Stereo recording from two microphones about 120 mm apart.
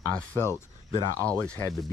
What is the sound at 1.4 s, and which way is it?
Speech, 10° left (ahead or behind).